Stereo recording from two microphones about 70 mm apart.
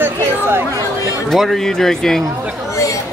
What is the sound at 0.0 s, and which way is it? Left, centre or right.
Chatter, right.